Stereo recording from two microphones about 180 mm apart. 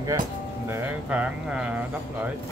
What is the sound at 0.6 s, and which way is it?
Speech, 10° right (ahead or behind).